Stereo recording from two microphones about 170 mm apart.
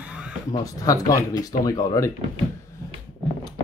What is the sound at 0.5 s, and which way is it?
Speech, 20° left (ahead or behind).